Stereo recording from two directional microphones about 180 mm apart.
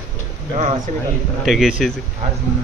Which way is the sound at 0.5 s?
45° right (ahead or behind).